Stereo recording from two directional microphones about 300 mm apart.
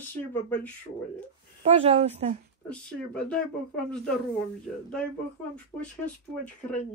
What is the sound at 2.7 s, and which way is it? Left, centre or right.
Speech, centre.